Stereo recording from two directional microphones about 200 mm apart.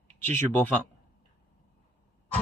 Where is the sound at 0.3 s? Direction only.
10° left (ahead or behind).